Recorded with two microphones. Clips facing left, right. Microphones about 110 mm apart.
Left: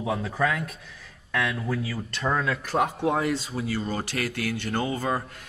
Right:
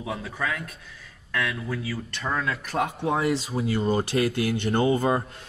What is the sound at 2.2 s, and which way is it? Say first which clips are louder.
Speech: left 2 dB; 15° left (ahead or behind).